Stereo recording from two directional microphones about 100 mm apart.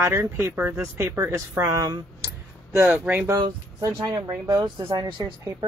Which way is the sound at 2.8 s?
20° right (ahead or behind).